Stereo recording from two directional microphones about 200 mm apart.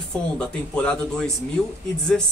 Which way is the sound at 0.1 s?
5° left (ahead or behind).